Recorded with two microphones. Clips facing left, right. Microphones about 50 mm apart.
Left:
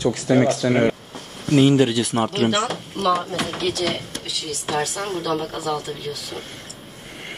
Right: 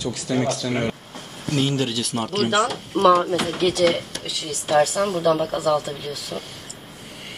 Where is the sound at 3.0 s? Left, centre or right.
Right.